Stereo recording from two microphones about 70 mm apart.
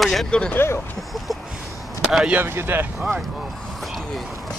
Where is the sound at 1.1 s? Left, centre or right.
Centre.